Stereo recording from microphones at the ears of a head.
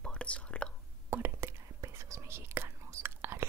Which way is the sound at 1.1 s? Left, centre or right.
Right.